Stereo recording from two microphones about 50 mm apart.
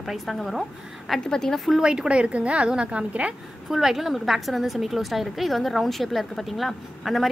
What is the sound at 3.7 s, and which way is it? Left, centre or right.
A woman's voice, centre.